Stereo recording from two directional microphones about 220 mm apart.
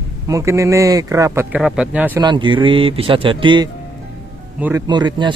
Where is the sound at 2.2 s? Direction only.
20° right (ahead or behind).